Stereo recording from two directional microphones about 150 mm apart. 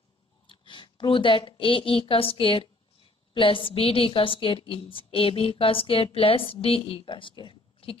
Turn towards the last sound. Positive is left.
turn(degrees=35)  # may be behind; listen again after turning